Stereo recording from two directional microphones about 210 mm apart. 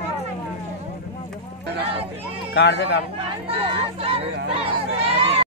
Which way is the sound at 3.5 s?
25° right (ahead or behind).